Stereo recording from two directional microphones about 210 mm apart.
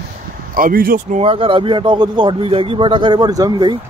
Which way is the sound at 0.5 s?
40° right (ahead or behind).